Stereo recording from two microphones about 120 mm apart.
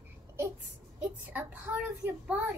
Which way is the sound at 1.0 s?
15° right (ahead or behind).